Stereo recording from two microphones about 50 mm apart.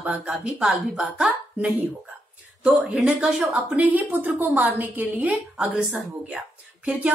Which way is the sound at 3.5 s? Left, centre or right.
Right.